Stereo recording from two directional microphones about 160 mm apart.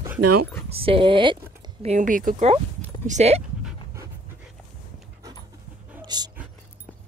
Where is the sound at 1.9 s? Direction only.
55° right (ahead or behind).